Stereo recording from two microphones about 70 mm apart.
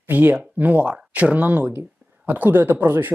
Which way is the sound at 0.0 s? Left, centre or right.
Right.